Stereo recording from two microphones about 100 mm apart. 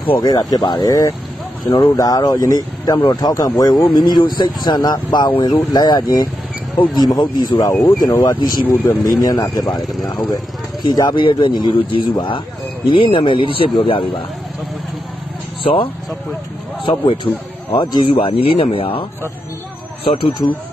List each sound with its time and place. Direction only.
0.2 s speech: 40° left (ahead or behind)
11.2 s a man's voice: 55° left (ahead or behind)
15.6 s a man's voice: 65° left (ahead or behind)
20.1 s a man's voice: 60° left (ahead or behind)